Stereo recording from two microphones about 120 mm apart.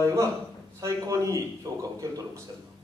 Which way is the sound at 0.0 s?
25° right (ahead or behind).